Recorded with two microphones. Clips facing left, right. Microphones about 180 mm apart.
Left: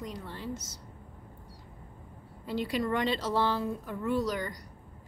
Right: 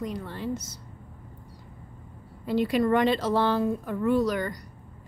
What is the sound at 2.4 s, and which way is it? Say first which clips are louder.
Speech: right 7 dB; 60° right (ahead or behind).